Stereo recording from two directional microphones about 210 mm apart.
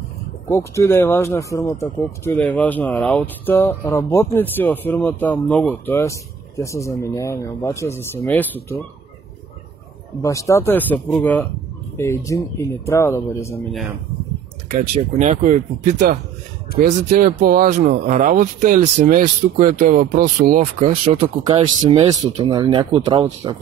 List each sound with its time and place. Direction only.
0.5 s speech: 15° left (ahead or behind)
10.2 s speech: 15° left (ahead or behind)
14.7 s speech: 35° right (ahead or behind)